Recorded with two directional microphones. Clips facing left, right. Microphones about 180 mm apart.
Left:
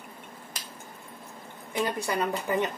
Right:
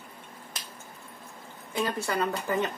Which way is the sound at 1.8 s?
15° left (ahead or behind).